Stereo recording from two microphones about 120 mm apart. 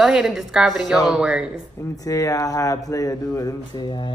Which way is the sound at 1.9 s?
30° left (ahead or behind).